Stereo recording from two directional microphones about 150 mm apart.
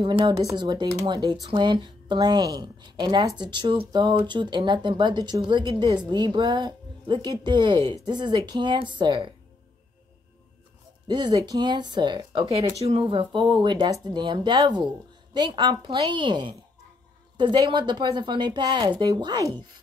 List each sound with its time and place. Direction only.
0.2 s speech: 25° right (ahead or behind)
11.1 s speech: 30° right (ahead or behind)